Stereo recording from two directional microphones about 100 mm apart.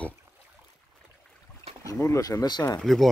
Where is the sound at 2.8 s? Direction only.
5° left (ahead or behind).